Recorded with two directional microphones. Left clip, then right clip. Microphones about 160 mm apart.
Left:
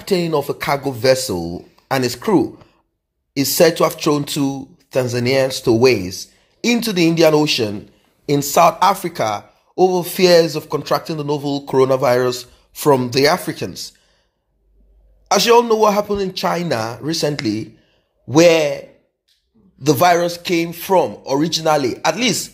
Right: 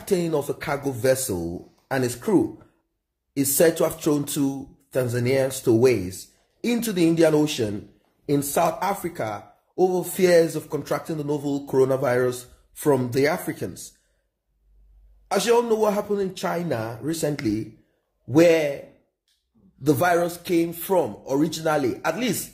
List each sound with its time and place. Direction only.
0.0 s speech: centre (ahead or behind)
15.2 s speech: 5° left (ahead or behind)
19.8 s speech: centre (ahead or behind)